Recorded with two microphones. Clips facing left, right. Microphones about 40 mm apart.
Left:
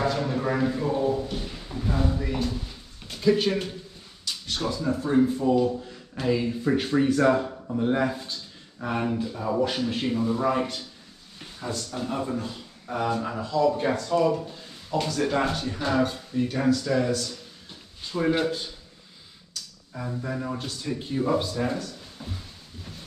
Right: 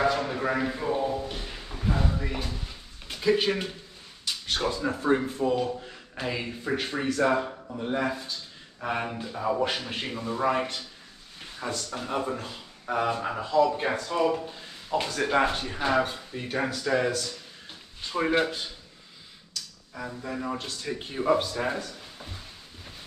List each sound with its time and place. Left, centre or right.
0.0 s drawer open or close: centre
4.2 s a sound: right
4.8 s speech: right; by 7.5 s centre
7.8 s speech: centre
8.8 s speech: centre
12.8 s speech: right
18.3 s speech: right
20.1 s speech: centre
20.3 s speech: centre
20.8 s speech: right